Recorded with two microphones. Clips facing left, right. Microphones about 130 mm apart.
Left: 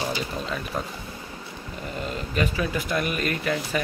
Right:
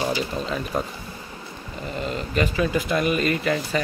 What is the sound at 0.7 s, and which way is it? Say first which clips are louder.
Speech: right 5 dB; 20° right (ahead or behind).